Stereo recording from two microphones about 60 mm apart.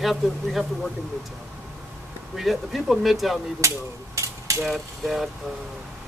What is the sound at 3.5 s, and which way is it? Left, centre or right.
Mechanisms, right.